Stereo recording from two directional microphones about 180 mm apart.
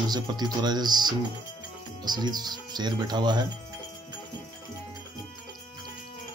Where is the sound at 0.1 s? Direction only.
25° right (ahead or behind).